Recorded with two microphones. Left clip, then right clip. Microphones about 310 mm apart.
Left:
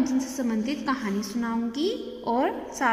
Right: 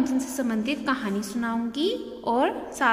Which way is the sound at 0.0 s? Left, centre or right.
Right.